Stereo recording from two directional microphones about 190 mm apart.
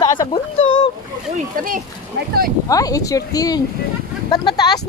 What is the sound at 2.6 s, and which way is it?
Speech, 20° left (ahead or behind).